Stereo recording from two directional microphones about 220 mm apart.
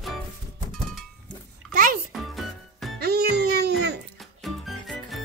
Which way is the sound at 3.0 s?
45° right (ahead or behind).